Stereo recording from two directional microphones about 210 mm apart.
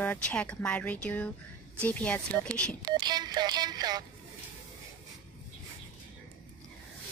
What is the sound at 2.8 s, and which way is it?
Telephone dialing, 20° right (ahead or behind).